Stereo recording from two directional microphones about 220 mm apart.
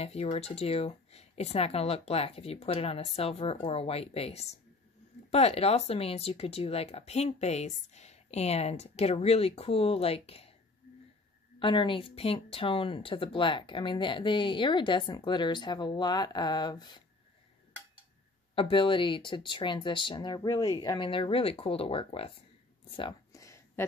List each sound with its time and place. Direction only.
0.0 s speech: 30° left (ahead or behind)
11.6 s speech: 20° left (ahead or behind)
18.5 s speech: 25° left (ahead or behind)
22.9 s a sound: 20° left (ahead or behind)